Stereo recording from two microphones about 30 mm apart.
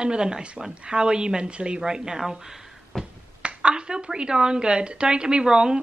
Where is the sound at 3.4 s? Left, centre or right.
Right.